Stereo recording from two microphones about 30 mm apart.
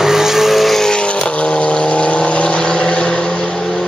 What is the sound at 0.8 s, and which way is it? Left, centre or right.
Vehicle, left.